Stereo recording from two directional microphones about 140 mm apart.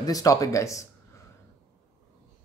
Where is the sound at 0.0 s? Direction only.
25° left (ahead or behind).